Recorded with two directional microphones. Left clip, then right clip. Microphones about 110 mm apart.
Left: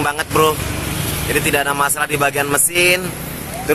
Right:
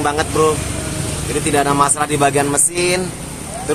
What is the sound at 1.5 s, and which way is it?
Speech, centre (ahead or behind).